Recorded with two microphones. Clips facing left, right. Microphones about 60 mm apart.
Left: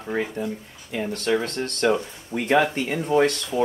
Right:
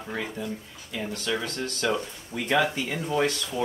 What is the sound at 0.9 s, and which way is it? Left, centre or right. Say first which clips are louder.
Speech: left 6 dB; left.